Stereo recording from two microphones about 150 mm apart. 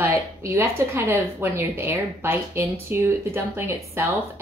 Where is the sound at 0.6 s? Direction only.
15° right (ahead or behind).